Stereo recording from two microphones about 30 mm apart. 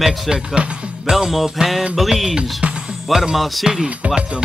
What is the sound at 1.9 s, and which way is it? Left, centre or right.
Speech, centre.